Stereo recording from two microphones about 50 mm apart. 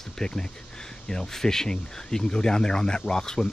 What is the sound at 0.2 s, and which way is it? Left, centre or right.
Speech, centre.